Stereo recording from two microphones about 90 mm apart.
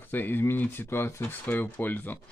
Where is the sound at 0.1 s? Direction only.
25° left (ahead or behind).